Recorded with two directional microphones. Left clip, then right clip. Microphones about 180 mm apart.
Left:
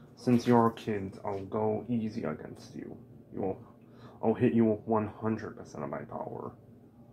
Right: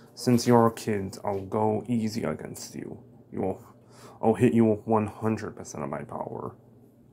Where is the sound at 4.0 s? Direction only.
55° right (ahead or behind).